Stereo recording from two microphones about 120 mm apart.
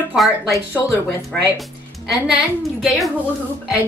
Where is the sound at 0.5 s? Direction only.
25° left (ahead or behind).